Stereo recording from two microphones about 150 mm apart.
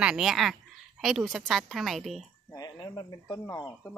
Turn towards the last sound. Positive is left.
turn(degrees=20)  # may be behind; listen again after turning